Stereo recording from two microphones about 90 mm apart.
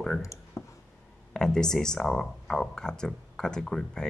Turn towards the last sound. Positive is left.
turn(degrees=5)  # may be behind; listen again after turning